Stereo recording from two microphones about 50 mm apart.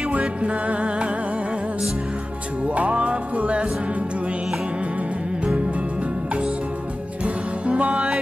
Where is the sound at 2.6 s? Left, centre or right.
Right.